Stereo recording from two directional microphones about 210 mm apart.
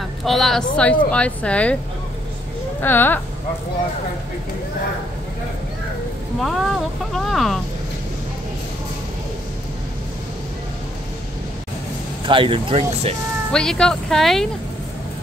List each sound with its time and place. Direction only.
0.2 s speech: centre (ahead or behind)
2.8 s speech: 10° left (ahead or behind)
6.4 s speech: centre (ahead or behind)
12.3 s speech: 25° right (ahead or behind)
13.5 s speech: 5° left (ahead or behind)